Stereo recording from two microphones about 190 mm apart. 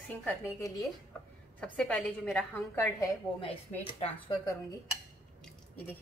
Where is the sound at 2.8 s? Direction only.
15° left (ahead or behind).